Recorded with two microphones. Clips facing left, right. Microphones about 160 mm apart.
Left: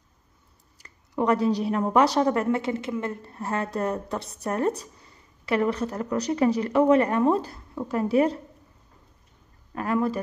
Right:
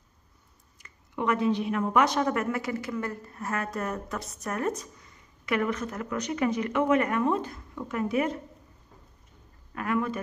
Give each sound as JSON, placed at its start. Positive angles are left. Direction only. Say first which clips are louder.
{"t": 0.7, "sound": "a woman's voice", "louder": "left 6 dB", "side_deg": 35}
{"t": 9.8, "sound": "a woman's voice", "louder": "left 4 dB", "side_deg": 35}